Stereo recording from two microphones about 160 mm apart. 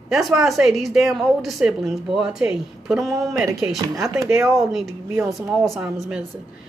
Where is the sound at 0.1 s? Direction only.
Centre (ahead or behind).